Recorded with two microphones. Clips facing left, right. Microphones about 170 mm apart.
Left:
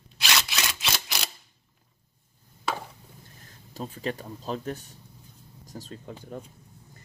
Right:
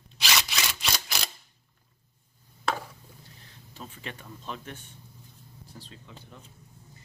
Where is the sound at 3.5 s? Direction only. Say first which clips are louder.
Left 8 dB; 40° left (ahead or behind).